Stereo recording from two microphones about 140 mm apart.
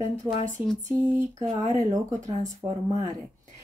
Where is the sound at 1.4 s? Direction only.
55° right (ahead or behind).